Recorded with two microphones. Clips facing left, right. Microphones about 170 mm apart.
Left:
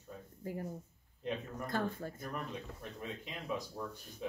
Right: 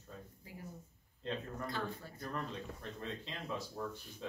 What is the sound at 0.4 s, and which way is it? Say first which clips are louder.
Speech: left 11 dB; 50° left (ahead or behind).